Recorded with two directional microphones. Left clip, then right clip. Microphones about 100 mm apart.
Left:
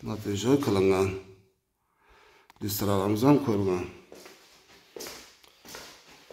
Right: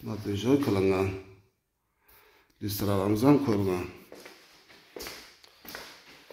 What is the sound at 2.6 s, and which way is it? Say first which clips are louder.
Speech: left 1 dB; 20° left (ahead or behind).